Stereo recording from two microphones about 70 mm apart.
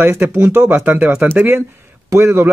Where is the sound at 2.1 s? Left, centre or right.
Right.